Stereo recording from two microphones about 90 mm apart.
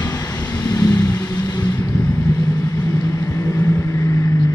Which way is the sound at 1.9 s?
30° left (ahead or behind).